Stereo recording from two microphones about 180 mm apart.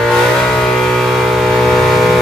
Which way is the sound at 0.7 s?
5° left (ahead or behind).